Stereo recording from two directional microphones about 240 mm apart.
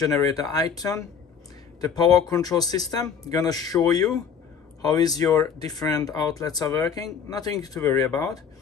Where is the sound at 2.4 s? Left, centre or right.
Centre.